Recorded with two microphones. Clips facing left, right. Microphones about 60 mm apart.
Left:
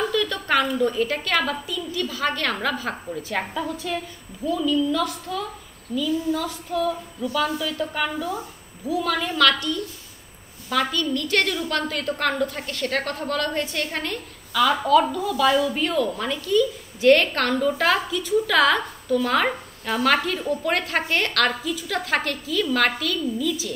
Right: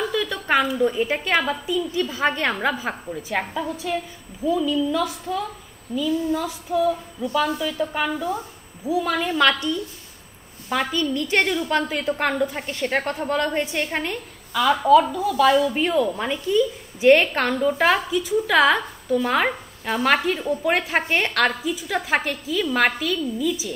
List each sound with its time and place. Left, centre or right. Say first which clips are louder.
0.1 s a woman's voice: right 1 dB; centre
1.9 s a woman's voice: left 1 dB; right
14.6 s a woman's voice: right 2 dB; centre
15.7 s a woman's voice: right 2 dB; centre